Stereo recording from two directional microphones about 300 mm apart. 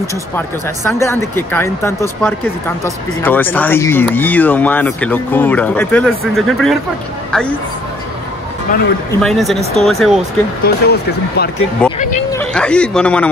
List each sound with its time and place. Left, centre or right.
0.8 s speech: centre
9.1 s speech: centre
10.6 s speech: left
11.8 s a sound: centre
12.3 s speech: centre